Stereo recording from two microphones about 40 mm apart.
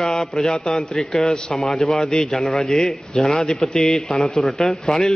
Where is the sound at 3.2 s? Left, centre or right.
Left.